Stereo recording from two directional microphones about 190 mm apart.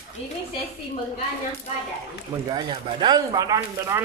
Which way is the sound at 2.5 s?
25° right (ahead or behind).